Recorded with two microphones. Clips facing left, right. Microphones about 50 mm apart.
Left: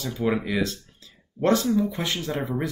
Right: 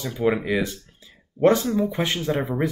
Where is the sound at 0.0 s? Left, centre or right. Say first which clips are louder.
Right 3 dB; centre.